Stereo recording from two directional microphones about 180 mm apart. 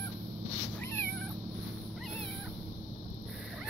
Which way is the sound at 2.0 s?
5° left (ahead or behind).